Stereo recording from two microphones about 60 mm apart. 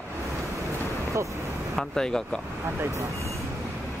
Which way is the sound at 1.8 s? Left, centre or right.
Centre.